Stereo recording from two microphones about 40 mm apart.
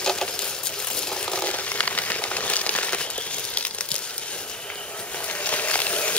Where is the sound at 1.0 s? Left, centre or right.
Left.